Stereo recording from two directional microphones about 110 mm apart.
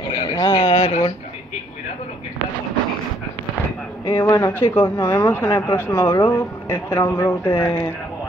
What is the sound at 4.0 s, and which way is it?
Speech, 35° left (ahead or behind).